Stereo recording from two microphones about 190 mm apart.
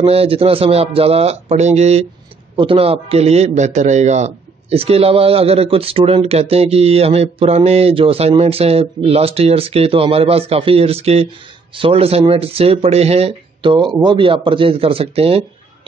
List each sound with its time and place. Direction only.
0.0 s a man's voice: 30° right (ahead or behind)